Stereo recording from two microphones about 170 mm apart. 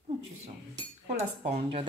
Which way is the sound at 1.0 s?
40° right (ahead or behind).